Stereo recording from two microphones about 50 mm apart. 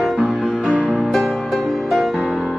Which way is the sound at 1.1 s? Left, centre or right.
Centre.